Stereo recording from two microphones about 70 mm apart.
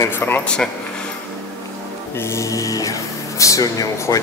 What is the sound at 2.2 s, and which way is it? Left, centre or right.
Speech, left.